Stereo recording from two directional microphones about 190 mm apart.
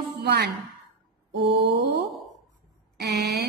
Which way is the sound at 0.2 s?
60° right (ahead or behind).